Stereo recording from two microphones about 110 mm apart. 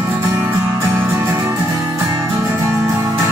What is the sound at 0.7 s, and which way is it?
Music, 20° right (ahead or behind).